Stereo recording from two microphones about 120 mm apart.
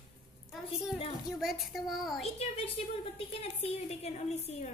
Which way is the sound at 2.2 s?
60° left (ahead or behind).